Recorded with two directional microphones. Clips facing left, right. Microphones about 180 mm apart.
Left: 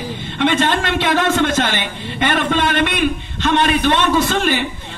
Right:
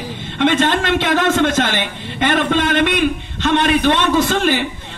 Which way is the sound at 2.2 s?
45° right (ahead or behind).